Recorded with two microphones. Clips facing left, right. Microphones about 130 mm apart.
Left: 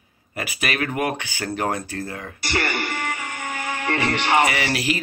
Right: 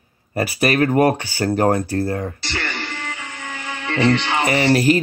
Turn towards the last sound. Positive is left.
turn(degrees=-40)  # may be behind; listen again after turning